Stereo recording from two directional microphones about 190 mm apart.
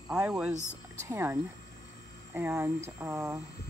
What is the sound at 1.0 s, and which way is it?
Speech, 15° right (ahead or behind).